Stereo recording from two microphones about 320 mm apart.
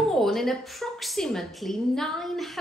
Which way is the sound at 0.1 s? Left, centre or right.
Centre.